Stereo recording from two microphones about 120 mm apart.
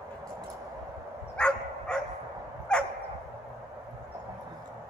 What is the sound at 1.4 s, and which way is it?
Dog, 10° left (ahead or behind).